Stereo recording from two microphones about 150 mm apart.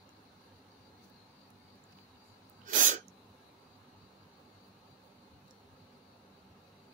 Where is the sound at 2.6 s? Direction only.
60° right (ahead or behind).